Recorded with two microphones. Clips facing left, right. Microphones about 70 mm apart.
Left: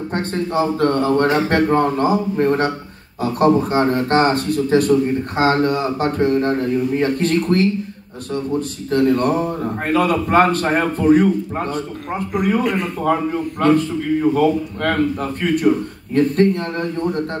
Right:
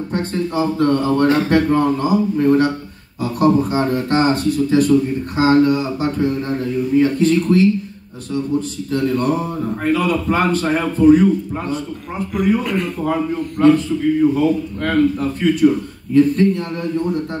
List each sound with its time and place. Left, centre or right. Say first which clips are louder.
0.1 s a man's voice: even; left
12.6 s a man's voice: left 1 dB; left
13.0 s a man's voice: left 4 dB; left